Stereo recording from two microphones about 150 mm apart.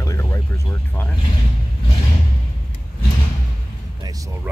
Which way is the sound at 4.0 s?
25° right (ahead or behind).